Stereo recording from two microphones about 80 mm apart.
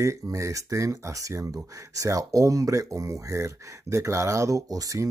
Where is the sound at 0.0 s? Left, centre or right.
Right.